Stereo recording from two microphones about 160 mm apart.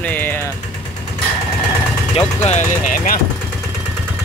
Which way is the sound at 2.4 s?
45° left (ahead or behind).